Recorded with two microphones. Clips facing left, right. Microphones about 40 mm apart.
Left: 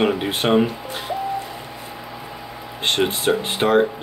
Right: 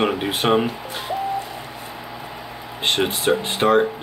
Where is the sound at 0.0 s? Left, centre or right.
Centre.